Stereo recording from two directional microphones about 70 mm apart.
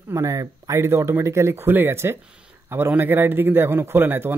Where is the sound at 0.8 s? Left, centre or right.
Right.